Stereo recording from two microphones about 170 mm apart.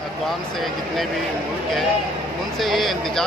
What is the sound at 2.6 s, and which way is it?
Speech, centre (ahead or behind).